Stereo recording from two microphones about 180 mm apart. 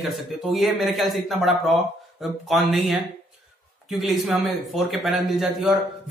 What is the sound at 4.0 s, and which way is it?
A man's voice, centre (ahead or behind).